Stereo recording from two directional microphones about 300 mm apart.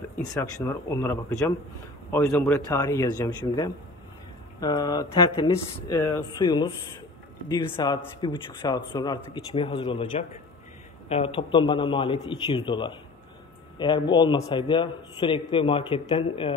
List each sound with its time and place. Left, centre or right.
0.2 s a man's voice: centre